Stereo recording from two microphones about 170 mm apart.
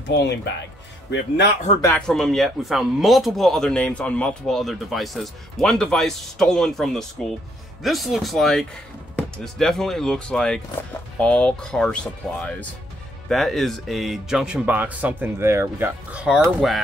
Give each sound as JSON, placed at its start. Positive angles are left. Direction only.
{"t": 0.0, "sound": "speech", "side_deg": 80}
{"t": 2.0, "sound": "speech", "side_deg": 5}